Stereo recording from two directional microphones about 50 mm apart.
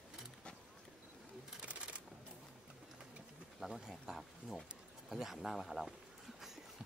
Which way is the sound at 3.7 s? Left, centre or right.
Centre.